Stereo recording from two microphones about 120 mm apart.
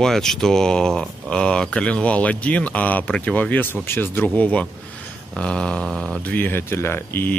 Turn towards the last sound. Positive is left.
turn(degrees=20)  # may be behind; listen again after turning